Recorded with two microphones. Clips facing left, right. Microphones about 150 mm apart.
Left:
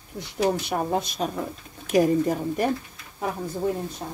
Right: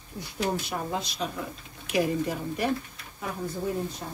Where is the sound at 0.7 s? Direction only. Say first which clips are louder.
Left 6 dB; 55° left (ahead or behind).